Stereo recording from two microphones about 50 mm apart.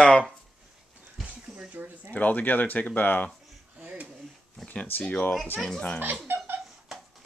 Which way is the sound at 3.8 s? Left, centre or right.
Right.